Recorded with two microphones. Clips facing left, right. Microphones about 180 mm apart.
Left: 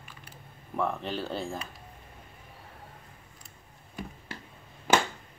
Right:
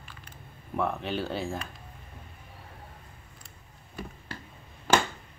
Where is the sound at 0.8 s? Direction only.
Centre (ahead or behind).